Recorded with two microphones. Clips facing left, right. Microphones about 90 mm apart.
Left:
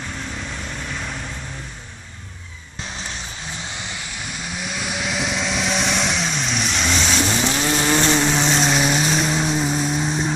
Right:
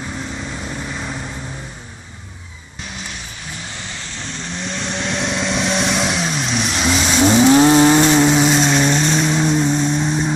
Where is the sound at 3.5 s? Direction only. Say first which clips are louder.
Right 1 dB; 15° left (ahead or behind); by 7.2 s 5° right (ahead or behind).